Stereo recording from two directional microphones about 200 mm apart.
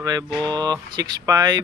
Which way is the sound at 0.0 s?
20° right (ahead or behind).